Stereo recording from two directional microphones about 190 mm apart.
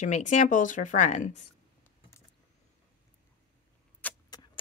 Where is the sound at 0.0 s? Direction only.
40° left (ahead or behind).